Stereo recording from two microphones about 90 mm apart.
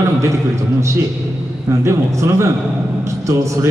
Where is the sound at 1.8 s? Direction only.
30° right (ahead or behind).